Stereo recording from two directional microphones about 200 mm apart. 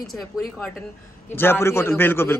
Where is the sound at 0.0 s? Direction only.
Centre (ahead or behind).